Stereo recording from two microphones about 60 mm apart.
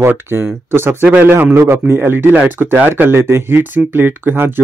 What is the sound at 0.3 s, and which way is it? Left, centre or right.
Speech, right.